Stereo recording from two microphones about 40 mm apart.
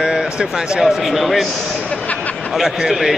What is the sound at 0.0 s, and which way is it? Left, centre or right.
Speech, centre.